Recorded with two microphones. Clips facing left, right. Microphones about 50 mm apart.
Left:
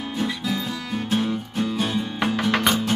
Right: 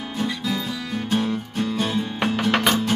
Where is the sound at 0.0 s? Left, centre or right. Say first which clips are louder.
Even; centre.